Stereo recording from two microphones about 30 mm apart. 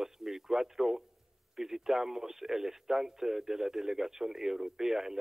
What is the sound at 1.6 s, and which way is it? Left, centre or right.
Speech, centre.